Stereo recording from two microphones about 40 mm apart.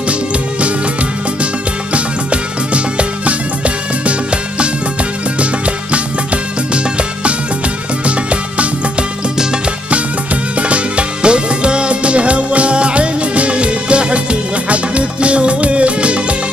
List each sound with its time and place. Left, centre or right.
0.1 s music: right
10.6 s music: right